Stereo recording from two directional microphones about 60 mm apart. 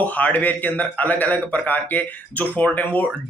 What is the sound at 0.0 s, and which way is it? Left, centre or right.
Speech, left.